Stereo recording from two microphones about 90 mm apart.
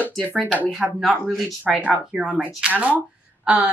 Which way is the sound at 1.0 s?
5° right (ahead or behind).